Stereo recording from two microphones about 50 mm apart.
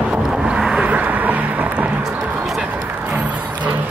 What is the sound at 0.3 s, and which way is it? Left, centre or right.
Vehicle, centre.